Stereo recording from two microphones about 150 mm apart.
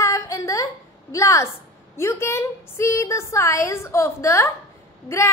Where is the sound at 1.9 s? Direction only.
15° left (ahead or behind).